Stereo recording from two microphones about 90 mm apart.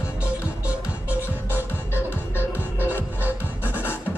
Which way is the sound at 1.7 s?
25° left (ahead or behind).